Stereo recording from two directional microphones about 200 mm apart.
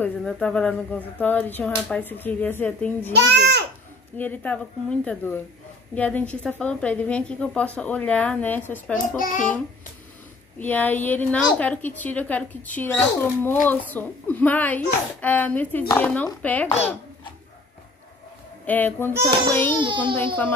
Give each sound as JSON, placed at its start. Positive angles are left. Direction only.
{"t": 0.0, "sound": "a woman's voice", "side_deg": 5}
{"t": 3.1, "sound": "a child's voice", "side_deg": -55}
{"t": 4.2, "sound": "a woman's voice", "side_deg": 10}
{"t": 9.2, "sound": "a child's voice", "side_deg": 40}
{"t": 10.6, "sound": "a woman's voice", "side_deg": 10}
{"t": 18.7, "sound": "a woman's voice", "side_deg": 10}
{"t": 19.7, "sound": "a child's voice", "side_deg": -25}